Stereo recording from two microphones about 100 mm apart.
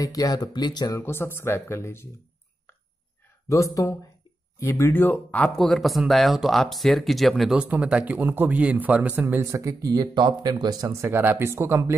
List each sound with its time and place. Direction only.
0.0 s speech: 40° left (ahead or behind)
0.9 s speech: 25° left (ahead or behind)
3.4 s speech: 35° left (ahead or behind); by 5.5 s 15° left (ahead or behind)
5.5 s speech: centre (ahead or behind)
7.6 s a man's voice: 15° right (ahead or behind)
9.5 s speech: 35° right (ahead or behind)
11.0 s speech: 25° right (ahead or behind)